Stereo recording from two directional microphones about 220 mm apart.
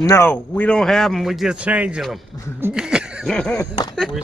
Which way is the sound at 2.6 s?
5° right (ahead or behind).